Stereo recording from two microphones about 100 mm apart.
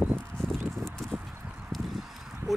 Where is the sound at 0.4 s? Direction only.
5° left (ahead or behind).